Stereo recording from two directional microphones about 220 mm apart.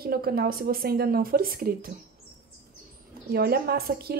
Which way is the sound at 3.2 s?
40° right (ahead or behind).